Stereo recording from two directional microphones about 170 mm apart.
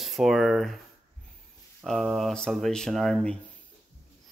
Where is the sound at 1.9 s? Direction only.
Centre (ahead or behind).